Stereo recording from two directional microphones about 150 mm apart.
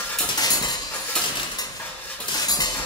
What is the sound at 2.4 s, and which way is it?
Music, 25° left (ahead or behind).